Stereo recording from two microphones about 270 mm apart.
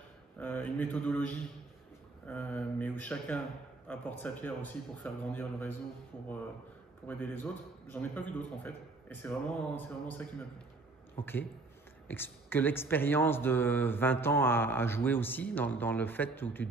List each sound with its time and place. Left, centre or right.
0.4 s a man's voice: centre
7.1 s speech: centre